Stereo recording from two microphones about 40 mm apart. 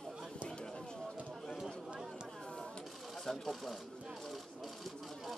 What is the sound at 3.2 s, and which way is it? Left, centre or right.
Speech, centre.